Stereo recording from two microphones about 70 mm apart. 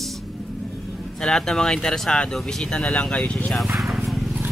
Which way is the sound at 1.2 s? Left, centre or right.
Centre.